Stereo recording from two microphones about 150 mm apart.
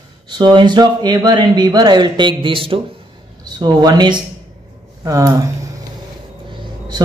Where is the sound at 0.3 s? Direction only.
30° right (ahead or behind).